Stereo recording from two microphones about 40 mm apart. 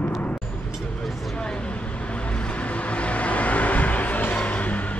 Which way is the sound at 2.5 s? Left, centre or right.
Left.